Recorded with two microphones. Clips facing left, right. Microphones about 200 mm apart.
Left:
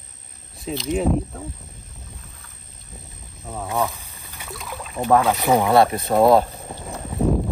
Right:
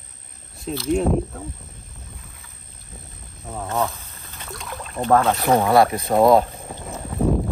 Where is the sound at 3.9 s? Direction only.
15° left (ahead or behind).